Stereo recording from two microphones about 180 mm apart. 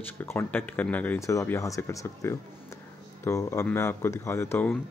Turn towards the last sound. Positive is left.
turn(degrees=15)  # may be behind; listen again after turning